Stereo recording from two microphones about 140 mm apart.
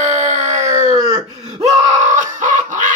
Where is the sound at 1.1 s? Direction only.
25° right (ahead or behind).